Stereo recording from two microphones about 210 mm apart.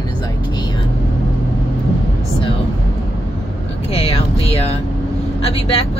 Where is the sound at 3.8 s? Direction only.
30° left (ahead or behind).